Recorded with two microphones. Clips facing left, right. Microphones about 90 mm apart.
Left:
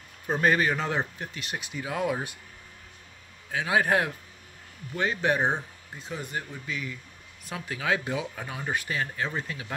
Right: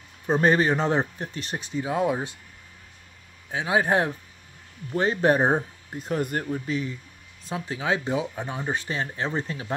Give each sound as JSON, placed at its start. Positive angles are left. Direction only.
{"t": 0.3, "sound": "speech", "side_deg": -30}
{"t": 3.5, "sound": "speech", "side_deg": -25}
{"t": 4.9, "sound": "speech", "side_deg": -35}
{"t": 5.9, "sound": "speech", "side_deg": -55}
{"t": 6.6, "sound": "speech", "side_deg": -35}
{"t": 7.4, "sound": "speech", "side_deg": -25}